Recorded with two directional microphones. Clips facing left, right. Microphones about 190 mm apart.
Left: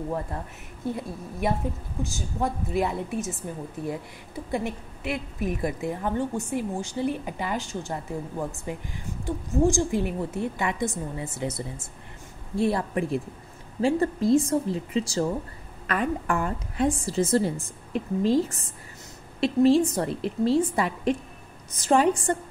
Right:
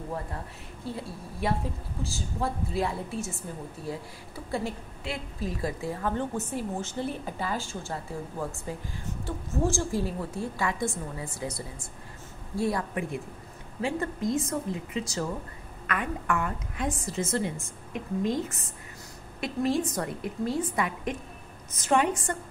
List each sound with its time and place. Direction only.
0.8 s a woman's voice: 20° left (ahead or behind)
4.5 s a woman's voice: 20° left (ahead or behind)